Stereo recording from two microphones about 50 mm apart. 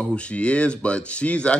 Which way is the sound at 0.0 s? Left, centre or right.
Left.